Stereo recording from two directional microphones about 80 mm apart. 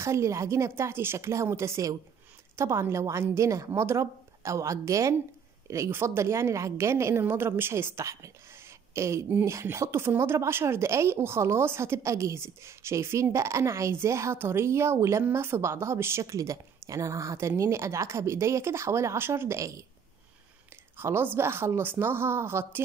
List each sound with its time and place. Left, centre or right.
0.0 s speech: right
21.0 s a woman's voice: right